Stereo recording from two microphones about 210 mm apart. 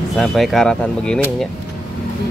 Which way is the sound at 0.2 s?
Centre (ahead or behind).